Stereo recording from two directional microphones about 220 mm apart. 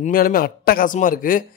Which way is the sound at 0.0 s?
40° left (ahead or behind).